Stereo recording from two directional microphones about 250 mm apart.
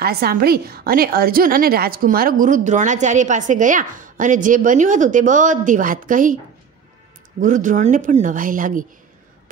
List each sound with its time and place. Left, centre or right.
0.0 s a woman's voice: right
7.3 s a woman's voice: right